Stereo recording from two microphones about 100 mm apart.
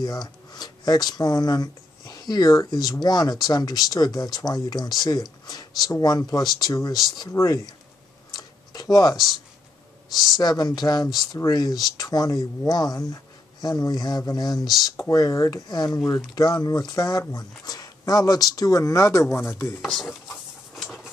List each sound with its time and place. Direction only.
0.0 s speech: 45° left (ahead or behind)
8.3 s tick-tock: 40° left (ahead or behind)
10.1 s speech: 45° left (ahead or behind); by 19.8 s 20° left (ahead or behind)
19.8 s stir: centre (ahead or behind)